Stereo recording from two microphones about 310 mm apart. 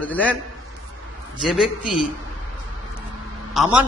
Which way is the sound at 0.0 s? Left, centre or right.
Centre.